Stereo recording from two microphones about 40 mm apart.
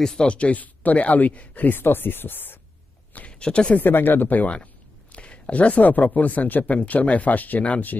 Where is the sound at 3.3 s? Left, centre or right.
Left.